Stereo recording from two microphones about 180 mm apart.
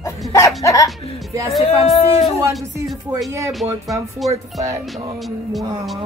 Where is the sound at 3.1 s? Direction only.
20° right (ahead or behind).